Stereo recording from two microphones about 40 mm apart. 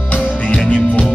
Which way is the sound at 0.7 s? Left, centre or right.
Left.